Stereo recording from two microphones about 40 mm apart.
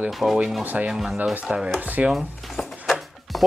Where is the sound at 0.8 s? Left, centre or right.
Right.